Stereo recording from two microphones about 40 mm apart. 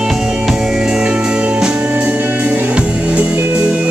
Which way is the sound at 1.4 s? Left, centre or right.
Right.